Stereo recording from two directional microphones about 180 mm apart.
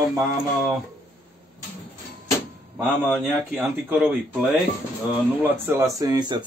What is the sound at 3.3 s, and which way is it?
Speech, 10° right (ahead or behind).